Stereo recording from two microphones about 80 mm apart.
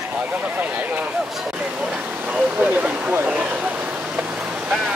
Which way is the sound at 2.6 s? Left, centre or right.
Centre.